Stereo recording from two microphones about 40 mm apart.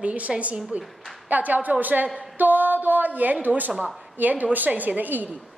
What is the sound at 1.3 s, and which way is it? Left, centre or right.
A woman's voice, right.